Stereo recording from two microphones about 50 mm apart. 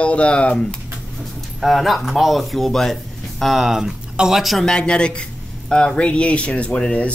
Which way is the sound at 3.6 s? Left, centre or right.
Centre.